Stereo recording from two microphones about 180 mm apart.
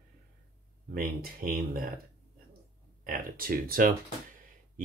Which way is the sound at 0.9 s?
55° right (ahead or behind).